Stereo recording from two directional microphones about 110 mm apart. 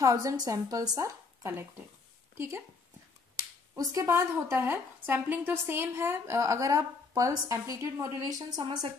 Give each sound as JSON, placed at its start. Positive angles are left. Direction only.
{"t": 0.0, "sound": "a woman's voice", "side_deg": -30}